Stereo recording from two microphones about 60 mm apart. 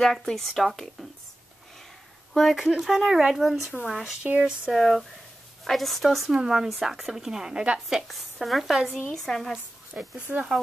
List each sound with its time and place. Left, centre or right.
0.0 s speech: centre
2.3 s speech: centre
7.9 s speech: centre
9.9 s speech: right